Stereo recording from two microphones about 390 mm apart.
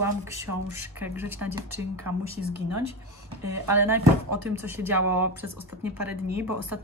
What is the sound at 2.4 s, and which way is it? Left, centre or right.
Speech, right.